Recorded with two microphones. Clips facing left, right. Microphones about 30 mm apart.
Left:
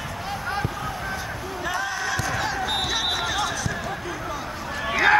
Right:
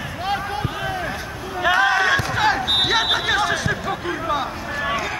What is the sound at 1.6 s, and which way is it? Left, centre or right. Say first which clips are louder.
Basketball bounce: right 11 dB; right.